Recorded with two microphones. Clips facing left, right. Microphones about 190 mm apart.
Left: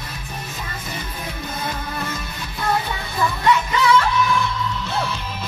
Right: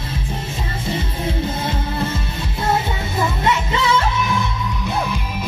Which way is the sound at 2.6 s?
25° right (ahead or behind).